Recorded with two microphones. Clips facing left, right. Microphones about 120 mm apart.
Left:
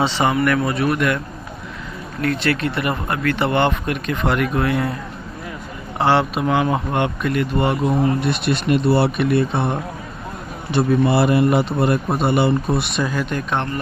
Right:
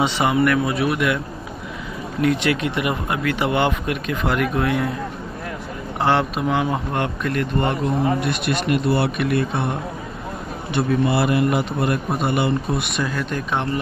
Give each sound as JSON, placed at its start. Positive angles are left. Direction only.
{"t": 0.0, "sound": "speech", "side_deg": -10}
{"t": 2.2, "sound": "speech", "side_deg": -15}
{"t": 5.9, "sound": "speech", "side_deg": 0}
{"t": 8.3, "sound": "speech", "side_deg": 30}
{"t": 10.7, "sound": "a man's voice", "side_deg": 35}
{"t": 13.1, "sound": "speech", "side_deg": 0}